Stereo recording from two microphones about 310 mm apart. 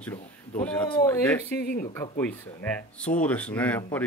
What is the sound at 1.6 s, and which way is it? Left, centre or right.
Speech, left.